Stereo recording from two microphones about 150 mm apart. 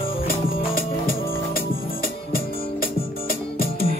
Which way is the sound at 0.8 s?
75° left (ahead or behind).